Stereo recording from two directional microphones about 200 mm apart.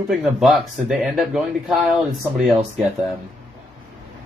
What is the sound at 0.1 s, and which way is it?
Speech, centre (ahead or behind).